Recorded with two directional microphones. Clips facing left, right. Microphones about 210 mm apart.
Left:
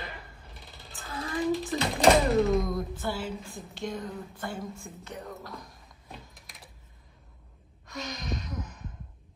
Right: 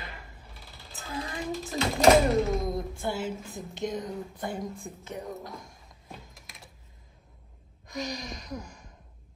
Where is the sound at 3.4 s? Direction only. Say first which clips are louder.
Right 3 dB; 20° right (ahead or behind).